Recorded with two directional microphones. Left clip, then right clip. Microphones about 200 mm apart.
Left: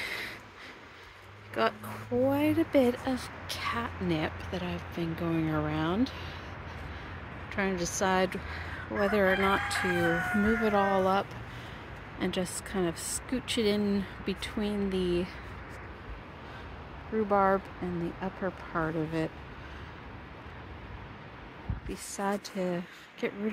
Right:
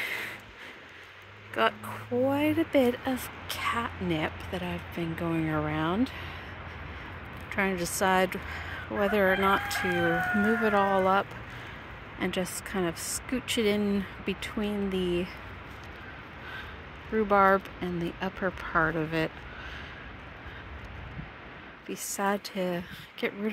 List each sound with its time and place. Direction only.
0.0 s a sound: centre (ahead or behind)
1.5 s speech: 5° left (ahead or behind)
7.4 s a woman's voice: 5° right (ahead or behind)
9.8 s speech: 35° right (ahead or behind)
10.6 s speech: centre (ahead or behind)
17.3 s a woman's voice: 5° right (ahead or behind)
21.9 s a woman's voice: 10° right (ahead or behind)